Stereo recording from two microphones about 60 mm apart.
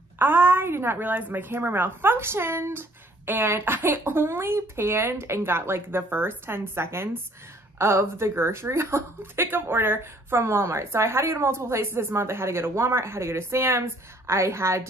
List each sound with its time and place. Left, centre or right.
0.2 s a woman's voice: right